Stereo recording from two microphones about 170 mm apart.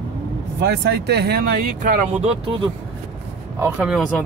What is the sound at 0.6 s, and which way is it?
Speech, 75° right (ahead or behind).